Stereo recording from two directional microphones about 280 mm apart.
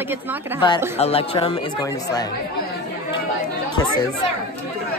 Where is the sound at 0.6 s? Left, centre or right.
Centre.